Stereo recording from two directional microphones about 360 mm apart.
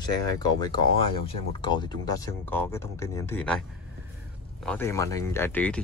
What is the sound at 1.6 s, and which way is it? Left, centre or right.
Speech, centre.